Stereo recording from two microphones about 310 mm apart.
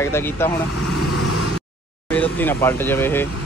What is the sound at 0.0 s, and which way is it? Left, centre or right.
Speech, centre.